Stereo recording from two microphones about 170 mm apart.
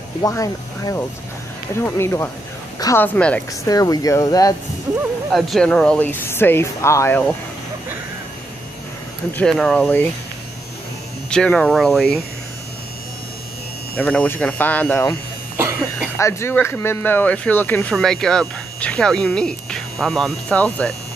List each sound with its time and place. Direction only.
0.2 s speech: 20° left (ahead or behind)
3.2 s speech: 5° left (ahead or behind)
3.6 s speech: 20° left (ahead or behind)
5.3 s speech: centre (ahead or behind)
9.4 s speech: centre (ahead or behind)
11.2 s speech: 5° left (ahead or behind)
13.9 s speech: 10° left (ahead or behind)
16.2 s speech: 15° left (ahead or behind)